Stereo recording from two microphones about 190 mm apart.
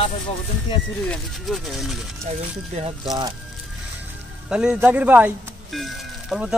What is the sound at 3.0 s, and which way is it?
Speech, 25° right (ahead or behind).